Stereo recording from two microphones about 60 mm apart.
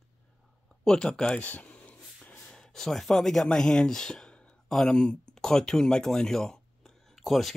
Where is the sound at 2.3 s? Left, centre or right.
Centre.